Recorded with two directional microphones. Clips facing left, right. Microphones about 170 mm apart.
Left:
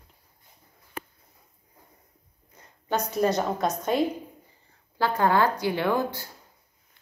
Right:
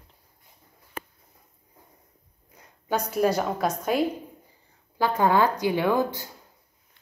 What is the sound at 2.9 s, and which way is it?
A woman's voice, 10° right (ahead or behind).